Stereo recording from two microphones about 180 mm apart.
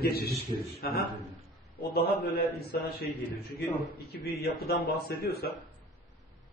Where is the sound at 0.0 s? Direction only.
60° left (ahead or behind).